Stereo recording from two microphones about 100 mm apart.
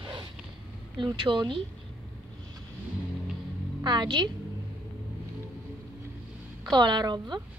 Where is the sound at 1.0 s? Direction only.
55° right (ahead or behind).